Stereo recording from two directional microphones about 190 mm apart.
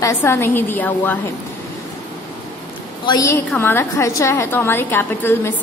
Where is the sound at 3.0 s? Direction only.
20° left (ahead or behind).